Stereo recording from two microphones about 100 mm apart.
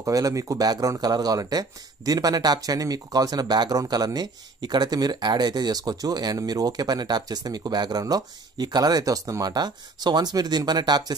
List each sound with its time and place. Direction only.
0.0 s speech: 35° right (ahead or behind)